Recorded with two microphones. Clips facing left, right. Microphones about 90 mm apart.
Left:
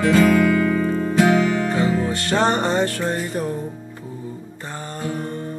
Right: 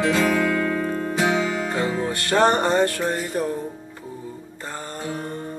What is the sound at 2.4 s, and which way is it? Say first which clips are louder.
Music: right 2 dB; 45° right (ahead or behind).